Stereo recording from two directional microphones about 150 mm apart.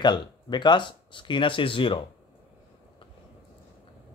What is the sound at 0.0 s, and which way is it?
A man's voice, 30° left (ahead or behind).